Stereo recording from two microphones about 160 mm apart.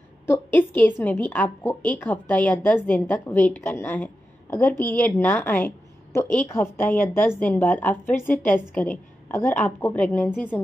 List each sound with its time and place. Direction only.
0.3 s a woman's voice: 10° left (ahead or behind)